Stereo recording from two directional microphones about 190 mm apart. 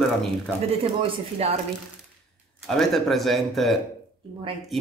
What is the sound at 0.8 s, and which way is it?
Speech, 30° right (ahead or behind).